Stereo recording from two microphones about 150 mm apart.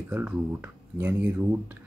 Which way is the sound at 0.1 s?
10° right (ahead or behind).